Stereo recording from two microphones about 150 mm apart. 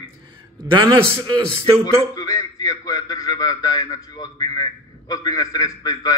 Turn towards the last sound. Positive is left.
turn(degrees=25)  # may be behind; listen again after turning